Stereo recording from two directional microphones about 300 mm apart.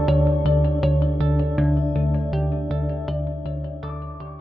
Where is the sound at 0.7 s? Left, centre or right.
Centre.